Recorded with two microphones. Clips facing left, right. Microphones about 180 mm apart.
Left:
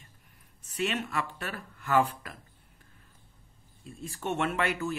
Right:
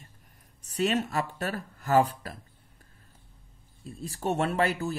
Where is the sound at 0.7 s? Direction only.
40° right (ahead or behind).